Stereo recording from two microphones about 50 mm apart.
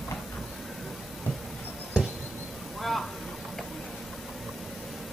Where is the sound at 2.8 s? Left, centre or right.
Centre.